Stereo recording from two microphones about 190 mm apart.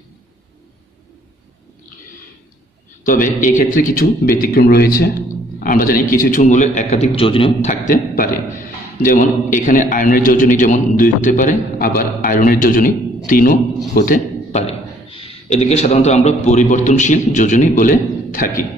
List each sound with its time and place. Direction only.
3.0 s a man's voice: 45° left (ahead or behind)
14.5 s a man's voice: 30° left (ahead or behind)